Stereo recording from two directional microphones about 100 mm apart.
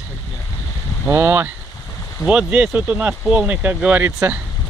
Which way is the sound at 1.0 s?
25° right (ahead or behind).